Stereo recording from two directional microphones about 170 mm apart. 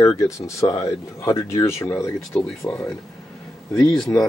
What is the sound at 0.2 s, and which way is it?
Speech, 15° left (ahead or behind).